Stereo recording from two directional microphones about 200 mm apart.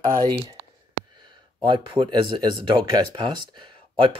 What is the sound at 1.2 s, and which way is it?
Speech, 25° right (ahead or behind).